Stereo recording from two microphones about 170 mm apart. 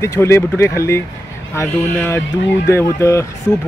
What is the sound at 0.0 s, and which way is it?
Speech, 15° left (ahead or behind).